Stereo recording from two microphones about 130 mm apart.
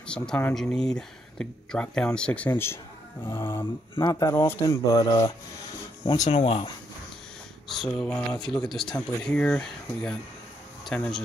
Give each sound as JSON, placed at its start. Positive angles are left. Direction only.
{"t": 0.0, "sound": "speech", "side_deg": 5}
{"t": 4.6, "sound": "speech", "side_deg": 30}
{"t": 6.3, "sound": "speech", "side_deg": 45}
{"t": 7.6, "sound": "speech", "side_deg": 0}